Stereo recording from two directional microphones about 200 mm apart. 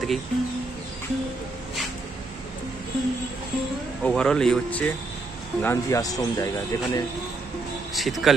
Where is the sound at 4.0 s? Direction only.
5° left (ahead or behind).